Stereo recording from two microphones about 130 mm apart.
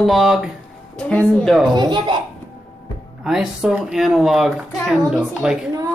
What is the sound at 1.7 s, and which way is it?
Speech, 35° right (ahead or behind).